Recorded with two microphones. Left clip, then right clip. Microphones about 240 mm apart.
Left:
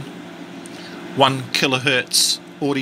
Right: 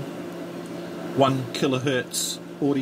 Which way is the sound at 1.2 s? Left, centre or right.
Centre.